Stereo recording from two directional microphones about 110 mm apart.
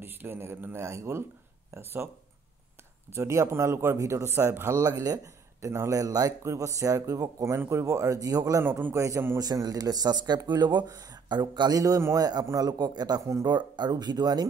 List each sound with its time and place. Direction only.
0.0 s speech: 20° right (ahead or behind)
3.2 s speech: 25° right (ahead or behind)
8.6 s speech: 20° right (ahead or behind); by 14.4 s 40° right (ahead or behind)